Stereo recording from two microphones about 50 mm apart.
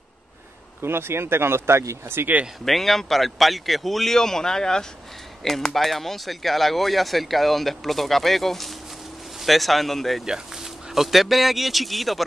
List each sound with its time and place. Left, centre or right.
0.8 s speech: right
2.6 s speech: centre
10.2 s speech: centre